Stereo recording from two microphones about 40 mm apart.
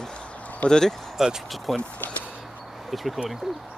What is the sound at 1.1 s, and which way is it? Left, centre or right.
Speech, centre.